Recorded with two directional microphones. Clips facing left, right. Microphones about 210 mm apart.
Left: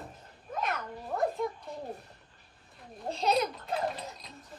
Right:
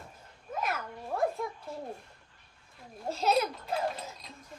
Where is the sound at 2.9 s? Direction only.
5° right (ahead or behind).